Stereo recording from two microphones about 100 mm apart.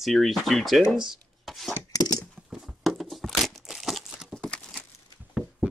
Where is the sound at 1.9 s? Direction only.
35° left (ahead or behind).